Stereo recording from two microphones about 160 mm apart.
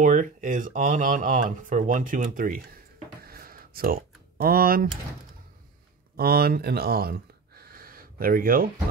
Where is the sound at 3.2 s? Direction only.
65° right (ahead or behind).